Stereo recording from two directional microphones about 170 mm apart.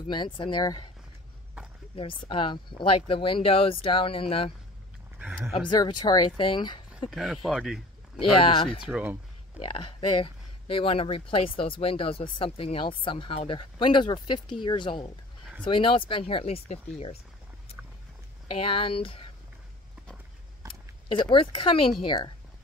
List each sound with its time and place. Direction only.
0.1 s speech: 25° left (ahead or behind)
2.0 s speech: 30° left (ahead or behind)
5.5 s speech: 25° left (ahead or behind)
7.1 s speech: centre (ahead or behind)
8.4 s speech: 30° left (ahead or behind)
8.8 s speech: 10° right (ahead or behind)
9.6 s speech: 30° left (ahead or behind)
18.6 s speech: 30° left (ahead or behind)
21.1 s speech: 30° left (ahead or behind)